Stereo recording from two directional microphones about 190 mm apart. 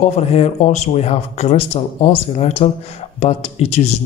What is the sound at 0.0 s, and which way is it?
Speech, 35° left (ahead or behind).